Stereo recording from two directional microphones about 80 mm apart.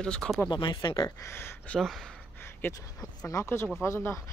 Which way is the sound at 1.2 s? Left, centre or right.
Left.